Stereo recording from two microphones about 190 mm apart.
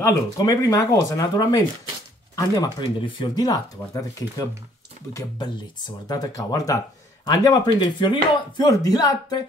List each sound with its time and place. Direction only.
0.0 s speech: 15° left (ahead or behind)